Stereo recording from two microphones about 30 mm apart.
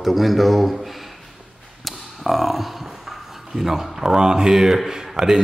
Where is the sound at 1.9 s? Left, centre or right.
Centre.